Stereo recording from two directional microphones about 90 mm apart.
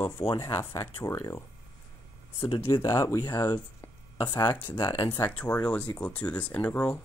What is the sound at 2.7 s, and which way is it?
Speech, 35° left (ahead or behind).